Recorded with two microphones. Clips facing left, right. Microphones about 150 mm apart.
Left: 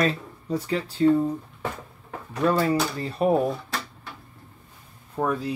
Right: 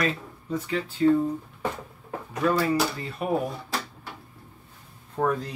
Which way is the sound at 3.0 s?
35° left (ahead or behind).